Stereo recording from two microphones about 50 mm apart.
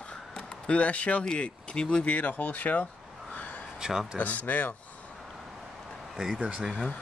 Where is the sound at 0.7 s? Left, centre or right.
Left.